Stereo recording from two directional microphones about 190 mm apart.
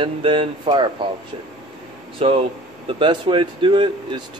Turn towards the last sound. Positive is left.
turn(degrees=-25)  # may be behind; listen again after turning